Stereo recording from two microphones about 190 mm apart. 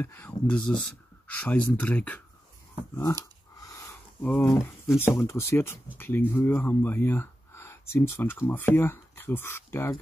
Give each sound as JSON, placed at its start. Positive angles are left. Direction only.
{"t": 0.0, "sound": "speech", "side_deg": 10}
{"t": 3.6, "sound": "a sound", "side_deg": 15}
{"t": 4.2, "sound": "speech", "side_deg": 10}